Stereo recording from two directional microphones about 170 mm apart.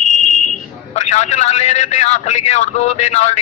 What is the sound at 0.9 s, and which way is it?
A man's voice, 40° left (ahead or behind).